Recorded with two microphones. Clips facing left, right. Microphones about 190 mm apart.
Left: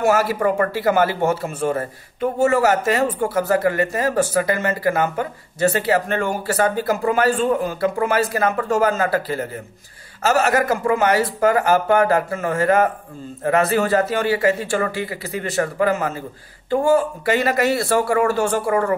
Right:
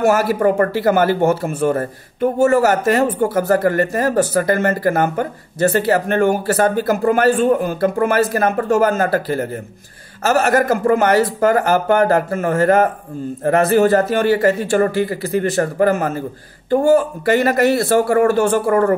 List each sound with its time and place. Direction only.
0.0 s speech: 50° right (ahead or behind)
7.8 s speech: 50° right (ahead or behind)